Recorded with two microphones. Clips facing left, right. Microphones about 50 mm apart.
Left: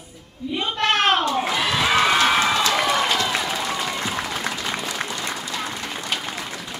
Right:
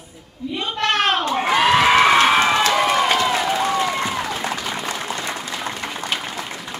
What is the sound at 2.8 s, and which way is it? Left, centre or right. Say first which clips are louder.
Applause: right 3 dB; right.